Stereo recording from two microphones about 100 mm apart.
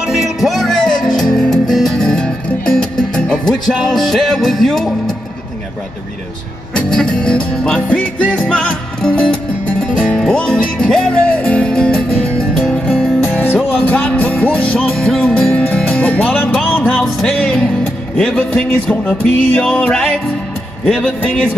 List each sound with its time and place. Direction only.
0.0 s music: 5° right (ahead or behind)
6.7 s music: 5° left (ahead or behind)
17.0 s music: 5° left (ahead or behind)
20.8 s music: 5° left (ahead or behind)